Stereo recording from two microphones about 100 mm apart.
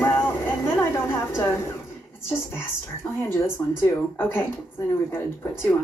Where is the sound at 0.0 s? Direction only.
25° left (ahead or behind).